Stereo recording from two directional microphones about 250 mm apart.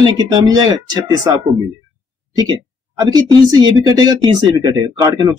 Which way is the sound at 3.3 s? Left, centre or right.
Centre.